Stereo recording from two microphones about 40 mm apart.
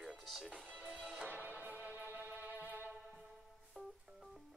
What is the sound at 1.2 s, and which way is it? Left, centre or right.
Music, right.